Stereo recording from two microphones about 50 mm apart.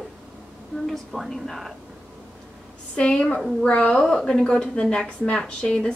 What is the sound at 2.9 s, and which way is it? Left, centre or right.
A woman's voice, left.